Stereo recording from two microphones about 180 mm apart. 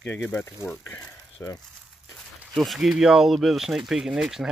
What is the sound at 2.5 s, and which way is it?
Speech, centre (ahead or behind).